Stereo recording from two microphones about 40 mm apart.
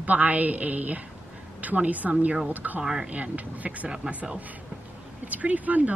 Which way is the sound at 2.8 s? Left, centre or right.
Centre.